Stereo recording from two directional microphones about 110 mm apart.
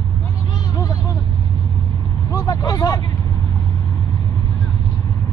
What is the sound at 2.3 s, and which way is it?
Vehicle, 35° left (ahead or behind).